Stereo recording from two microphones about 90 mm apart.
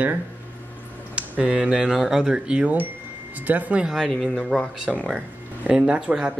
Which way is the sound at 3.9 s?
Centre (ahead or behind).